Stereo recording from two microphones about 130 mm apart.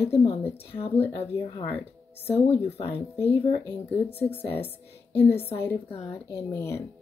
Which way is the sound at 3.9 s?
15° left (ahead or behind).